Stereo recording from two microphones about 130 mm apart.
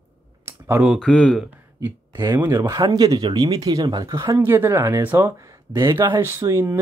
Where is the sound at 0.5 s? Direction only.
20° right (ahead or behind).